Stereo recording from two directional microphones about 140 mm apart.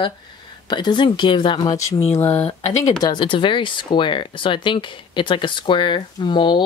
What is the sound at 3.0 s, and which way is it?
Speech, 35° left (ahead or behind).